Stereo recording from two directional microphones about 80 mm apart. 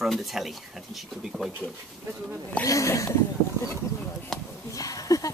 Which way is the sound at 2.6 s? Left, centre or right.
Left.